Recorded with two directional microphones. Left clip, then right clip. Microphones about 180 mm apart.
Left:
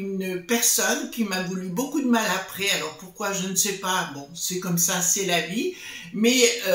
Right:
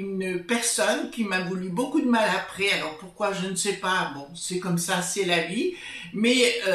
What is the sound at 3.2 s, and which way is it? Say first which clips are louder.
Speech: left 1 dB; 20° left (ahead or behind).